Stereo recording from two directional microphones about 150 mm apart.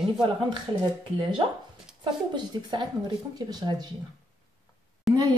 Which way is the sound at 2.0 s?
30° right (ahead or behind).